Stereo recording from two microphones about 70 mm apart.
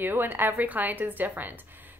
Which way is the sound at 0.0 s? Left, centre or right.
Right.